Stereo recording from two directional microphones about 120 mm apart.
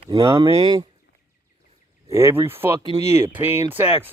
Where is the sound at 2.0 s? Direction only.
20° right (ahead or behind).